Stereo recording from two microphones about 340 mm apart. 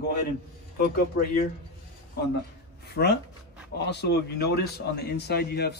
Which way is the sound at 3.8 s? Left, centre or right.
Left.